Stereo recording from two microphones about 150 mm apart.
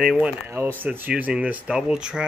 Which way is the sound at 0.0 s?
Centre (ahead or behind).